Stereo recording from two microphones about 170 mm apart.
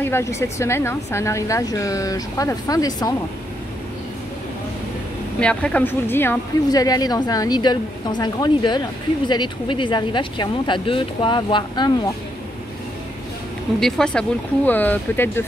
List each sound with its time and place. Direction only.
0.0 s speech: 15° left (ahead or behind)
5.4 s a woman's voice: 5° left (ahead or behind); by 11.9 s 25° left (ahead or behind)
13.7 s speech: centre (ahead or behind)